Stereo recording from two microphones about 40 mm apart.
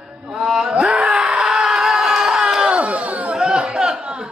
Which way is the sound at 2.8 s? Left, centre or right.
Right.